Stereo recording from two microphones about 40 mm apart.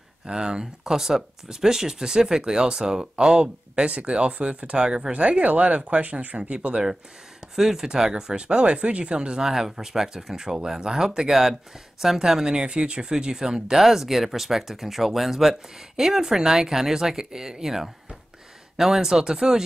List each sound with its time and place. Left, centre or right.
0.3 s speech: centre; by 4.7 s right
4.7 s speech: centre
5.1 s speech: right
6.5 s speech: right
7.5 s speech: centre
9.4 s speech: centre